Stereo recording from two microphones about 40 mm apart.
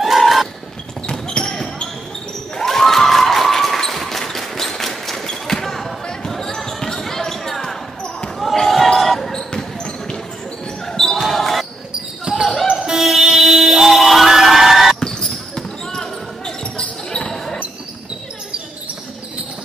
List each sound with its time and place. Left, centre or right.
0.0 s a sound: centre
1.0 s basketball bounce: centre
9.3 s basketball bounce: centre
10.9 s basketball bounce: centre
12.3 s basketball bounce: right
12.6 s music: centre
15.0 s basketball bounce: centre